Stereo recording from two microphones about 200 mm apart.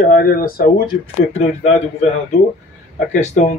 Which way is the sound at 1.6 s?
35° left (ahead or behind).